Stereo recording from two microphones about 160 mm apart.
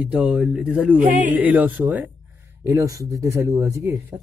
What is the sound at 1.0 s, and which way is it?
Speech, 55° right (ahead or behind).